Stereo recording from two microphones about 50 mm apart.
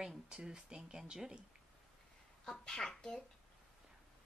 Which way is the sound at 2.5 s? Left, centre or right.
Centre.